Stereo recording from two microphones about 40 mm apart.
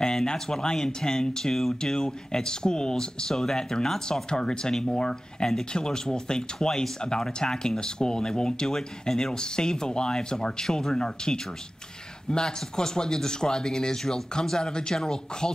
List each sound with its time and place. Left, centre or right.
0.0 s speech: centre